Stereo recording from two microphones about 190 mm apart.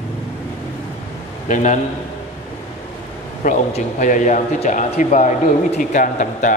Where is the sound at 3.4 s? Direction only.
45° left (ahead or behind).